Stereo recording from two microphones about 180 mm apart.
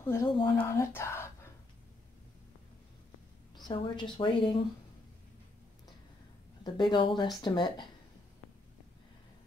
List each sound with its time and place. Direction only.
0.0 s speech: 15° left (ahead or behind)
3.6 s speech: 25° left (ahead or behind)
6.6 s speech: 25° left (ahead or behind)